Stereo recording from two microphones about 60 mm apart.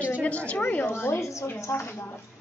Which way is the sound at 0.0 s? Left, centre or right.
Left.